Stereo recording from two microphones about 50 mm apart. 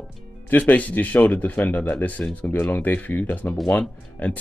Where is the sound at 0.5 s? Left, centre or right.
Left.